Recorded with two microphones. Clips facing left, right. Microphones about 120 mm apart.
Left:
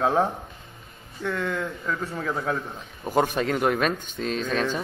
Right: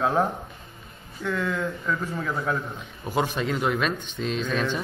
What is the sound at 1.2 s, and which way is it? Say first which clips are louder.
Speech: right 1 dB; 55° left (ahead or behind).